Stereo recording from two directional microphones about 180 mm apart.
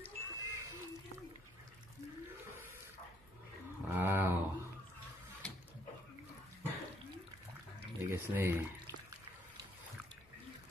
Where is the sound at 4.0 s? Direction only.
10° right (ahead or behind).